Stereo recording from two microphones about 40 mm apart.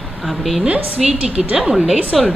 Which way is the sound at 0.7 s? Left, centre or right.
Right.